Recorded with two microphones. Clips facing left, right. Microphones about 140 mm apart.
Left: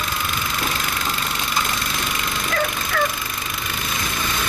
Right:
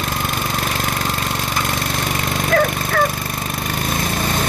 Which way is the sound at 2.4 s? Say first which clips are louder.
Right 8 dB; 50° right (ahead or behind).